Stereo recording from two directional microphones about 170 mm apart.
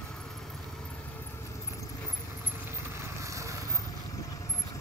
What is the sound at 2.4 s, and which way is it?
Vehicle, 15° right (ahead or behind).